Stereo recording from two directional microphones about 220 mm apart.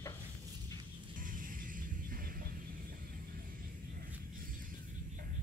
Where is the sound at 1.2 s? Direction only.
40° right (ahead or behind).